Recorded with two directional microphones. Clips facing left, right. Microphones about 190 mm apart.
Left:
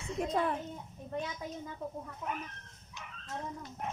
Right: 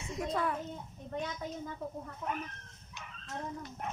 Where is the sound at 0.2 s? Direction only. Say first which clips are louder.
Left 2 dB; 25° left (ahead or behind).